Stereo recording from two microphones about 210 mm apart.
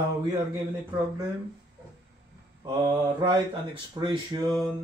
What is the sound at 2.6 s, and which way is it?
Mantra, 20° right (ahead or behind).